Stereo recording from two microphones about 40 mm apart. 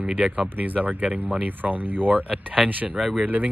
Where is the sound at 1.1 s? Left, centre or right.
Right.